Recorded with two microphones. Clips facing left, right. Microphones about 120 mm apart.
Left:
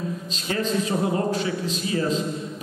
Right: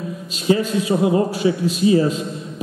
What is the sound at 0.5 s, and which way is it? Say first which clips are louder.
A man's voice: right 7 dB; 10° right (ahead or behind).